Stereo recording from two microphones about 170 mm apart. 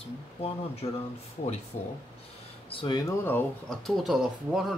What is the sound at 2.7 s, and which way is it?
Speech, 25° left (ahead or behind).